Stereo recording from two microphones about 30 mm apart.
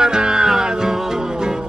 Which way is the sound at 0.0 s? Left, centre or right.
Right.